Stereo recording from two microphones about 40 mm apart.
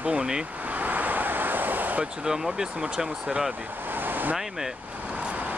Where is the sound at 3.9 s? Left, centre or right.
Right.